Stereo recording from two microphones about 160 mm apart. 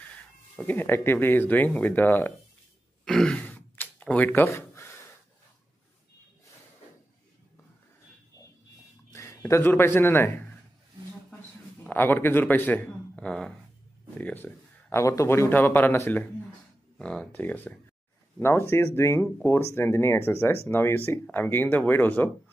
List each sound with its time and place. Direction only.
0.6 s speech: 15° left (ahead or behind)
3.1 s a sound: 5° left (ahead or behind)
9.1 s a man's voice: 20° left (ahead or behind)
11.8 s a man's voice: 10° left (ahead or behind)